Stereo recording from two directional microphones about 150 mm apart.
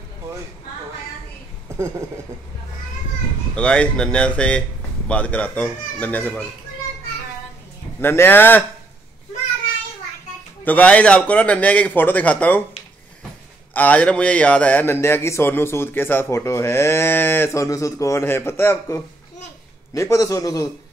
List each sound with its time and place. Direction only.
1.7 s a sound: 20° right (ahead or behind)
3.5 s speech: 5° left (ahead or behind)
8.0 s speech: 15° left (ahead or behind)
10.6 s speech: 10° left (ahead or behind)
13.7 s a man's voice: 10° left (ahead or behind)